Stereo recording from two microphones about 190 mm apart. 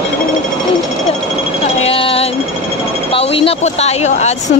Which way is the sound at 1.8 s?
30° left (ahead or behind).